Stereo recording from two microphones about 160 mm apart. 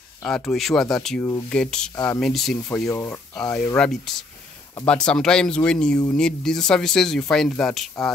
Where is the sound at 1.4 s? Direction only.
5° left (ahead or behind).